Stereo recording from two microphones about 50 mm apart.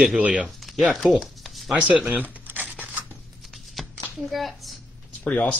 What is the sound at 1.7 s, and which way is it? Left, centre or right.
Speech, right.